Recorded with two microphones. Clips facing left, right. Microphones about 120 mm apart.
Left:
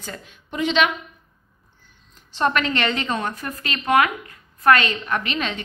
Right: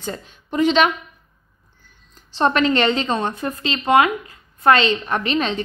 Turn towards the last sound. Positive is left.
turn(degrees=-35)  # may be behind; listen again after turning